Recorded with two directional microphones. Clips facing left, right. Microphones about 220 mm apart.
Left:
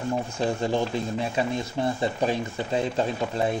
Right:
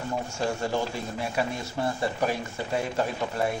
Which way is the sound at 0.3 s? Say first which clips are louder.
Left 1 dB; 20° left (ahead or behind).